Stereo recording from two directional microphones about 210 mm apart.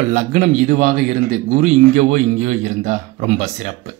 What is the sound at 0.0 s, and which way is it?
A man's voice, 35° right (ahead or behind).